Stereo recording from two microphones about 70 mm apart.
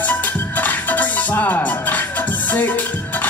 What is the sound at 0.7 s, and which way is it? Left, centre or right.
Music, left.